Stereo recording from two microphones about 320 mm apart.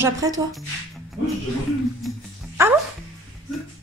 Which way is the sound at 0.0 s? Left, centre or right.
Centre.